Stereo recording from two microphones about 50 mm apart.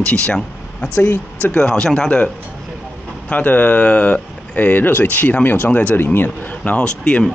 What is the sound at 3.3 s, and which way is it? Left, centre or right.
Speech, left.